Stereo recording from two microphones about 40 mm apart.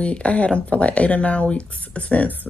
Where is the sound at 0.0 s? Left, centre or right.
Left.